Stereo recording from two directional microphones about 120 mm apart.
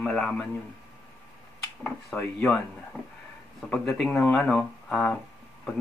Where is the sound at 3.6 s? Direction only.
5° left (ahead or behind).